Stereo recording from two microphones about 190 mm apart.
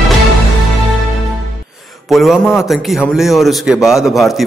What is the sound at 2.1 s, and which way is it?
A man's voice, centre (ahead or behind).